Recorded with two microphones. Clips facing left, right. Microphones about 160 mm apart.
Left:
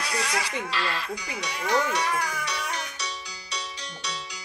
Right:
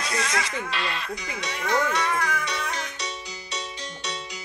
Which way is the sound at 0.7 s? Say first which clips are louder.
Even; 20° right (ahead or behind).